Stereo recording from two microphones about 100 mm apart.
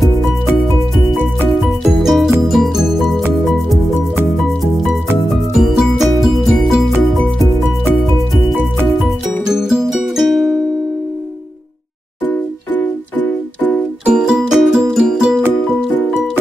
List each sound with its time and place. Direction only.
1.2 s music: centre (ahead or behind)
5.3 s music: centre (ahead or behind)
9.5 s music: 5° right (ahead or behind)
12.3 s music: 20° left (ahead or behind)
14.0 s music: 5° right (ahead or behind)